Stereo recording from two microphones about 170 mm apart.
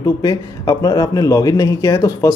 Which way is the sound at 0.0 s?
25° left (ahead or behind).